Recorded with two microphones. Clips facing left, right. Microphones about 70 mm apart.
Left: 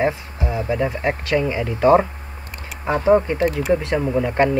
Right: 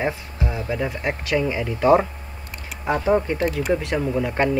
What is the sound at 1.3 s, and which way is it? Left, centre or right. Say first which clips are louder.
Speech: left 1 dB; centre.